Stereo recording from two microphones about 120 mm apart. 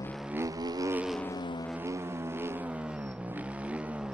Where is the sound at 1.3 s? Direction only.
40° left (ahead or behind).